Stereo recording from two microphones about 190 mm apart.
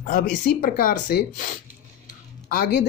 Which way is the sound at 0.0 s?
45° left (ahead or behind).